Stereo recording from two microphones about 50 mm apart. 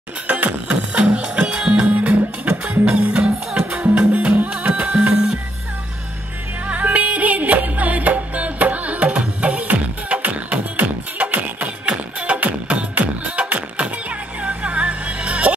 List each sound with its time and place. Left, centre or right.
0.3 s music: right
6.7 s music: right